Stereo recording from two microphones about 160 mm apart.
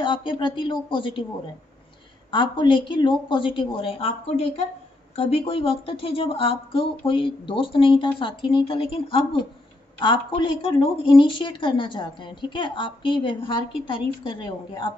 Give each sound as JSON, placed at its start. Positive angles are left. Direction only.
{"t": 0.0, "sound": "a woman's voice", "side_deg": 30}
{"t": 2.3, "sound": "a woman's voice", "side_deg": 30}